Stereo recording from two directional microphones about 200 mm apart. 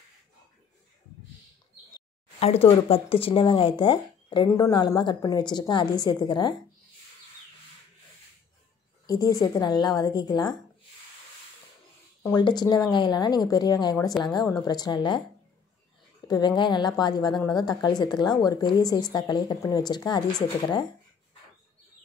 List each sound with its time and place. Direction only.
2.0 s a woman's voice: 30° left (ahead or behind)
9.0 s a woman's voice: 20° left (ahead or behind)
12.4 s a woman's voice: 20° left (ahead or behind)
16.3 s a woman's voice: 20° left (ahead or behind)